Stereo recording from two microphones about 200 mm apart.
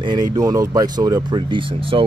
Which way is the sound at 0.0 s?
20° right (ahead or behind).